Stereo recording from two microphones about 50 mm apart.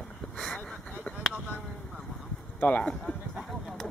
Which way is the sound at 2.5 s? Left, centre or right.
Left.